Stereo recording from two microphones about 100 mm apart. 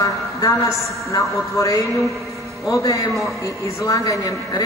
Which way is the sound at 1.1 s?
30° left (ahead or behind).